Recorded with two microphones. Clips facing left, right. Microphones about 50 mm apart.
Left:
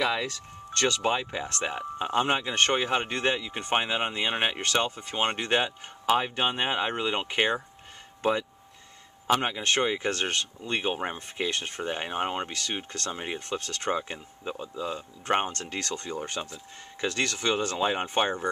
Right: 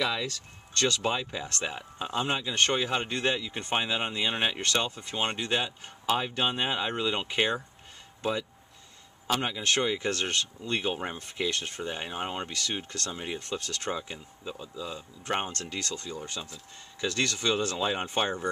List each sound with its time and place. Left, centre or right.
0.0 s speech: left
2.1 s speech: left; by 5.2 s centre
5.2 s speech: left
8.2 s speech: left
9.3 s speech: left
13.9 s speech: left
15.7 s speech: left
17.1 s speech: centre